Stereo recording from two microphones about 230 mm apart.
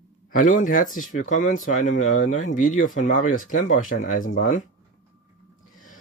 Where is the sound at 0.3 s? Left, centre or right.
Left.